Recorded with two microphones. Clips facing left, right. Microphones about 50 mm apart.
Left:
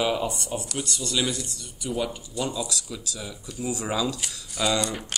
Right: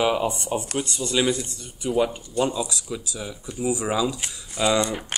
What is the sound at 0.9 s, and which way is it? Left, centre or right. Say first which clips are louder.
Speech: right 5 dB; right.